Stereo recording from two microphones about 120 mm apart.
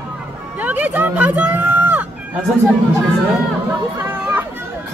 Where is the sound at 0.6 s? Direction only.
15° right (ahead or behind).